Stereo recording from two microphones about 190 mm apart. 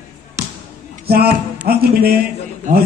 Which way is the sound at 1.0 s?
55° right (ahead or behind).